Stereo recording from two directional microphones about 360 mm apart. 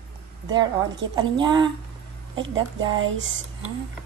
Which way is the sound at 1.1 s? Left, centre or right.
Centre.